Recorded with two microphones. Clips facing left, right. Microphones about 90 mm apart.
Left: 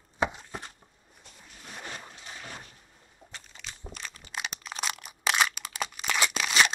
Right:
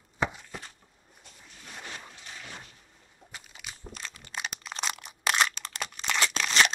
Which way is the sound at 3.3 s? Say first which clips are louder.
Even; 10° right (ahead or behind).